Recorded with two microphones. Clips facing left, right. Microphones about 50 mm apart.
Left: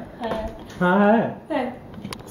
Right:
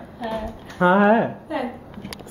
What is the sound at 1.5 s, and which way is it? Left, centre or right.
Speech, centre.